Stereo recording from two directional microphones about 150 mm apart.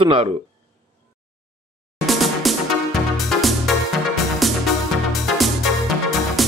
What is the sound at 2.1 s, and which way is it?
Music, centre (ahead or behind).